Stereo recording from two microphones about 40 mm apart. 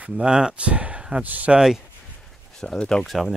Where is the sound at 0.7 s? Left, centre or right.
Right.